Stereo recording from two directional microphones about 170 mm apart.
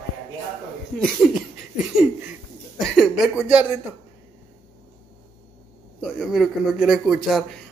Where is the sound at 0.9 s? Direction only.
5° left (ahead or behind).